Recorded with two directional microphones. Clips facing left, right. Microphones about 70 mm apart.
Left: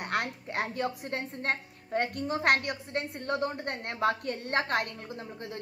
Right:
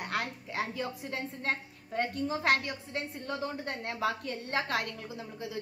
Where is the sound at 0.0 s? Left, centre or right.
Left.